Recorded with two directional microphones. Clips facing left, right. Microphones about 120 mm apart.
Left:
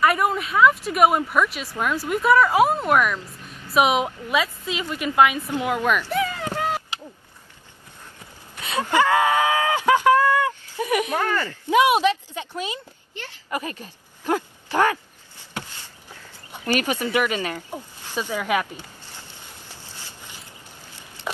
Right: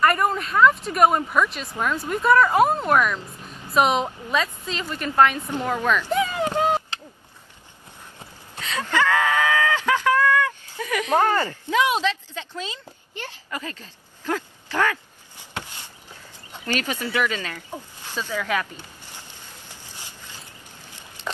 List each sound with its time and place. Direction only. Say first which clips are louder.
0.0 s a woman's voice: even; 5° left (ahead or behind)
6.0 s a sound: right 2 dB; 20° right (ahead or behind)
8.5 s a sound: left 3 dB; 15° left (ahead or behind)
11.6 s a woman's voice: left 7 dB; 15° left (ahead or behind)
15.7 s walk: right 1 dB; 15° right (ahead or behind)
16.5 s a woman's voice: left 4 dB; 15° left (ahead or behind)